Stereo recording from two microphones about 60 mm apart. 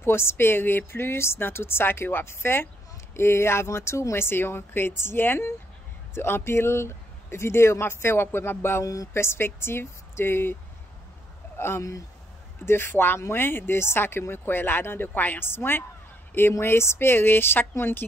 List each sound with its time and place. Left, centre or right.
0.0 s speech: left
8.8 s speech: left
9.1 s speech: left
11.5 s a sound: left
12.6 s speech: left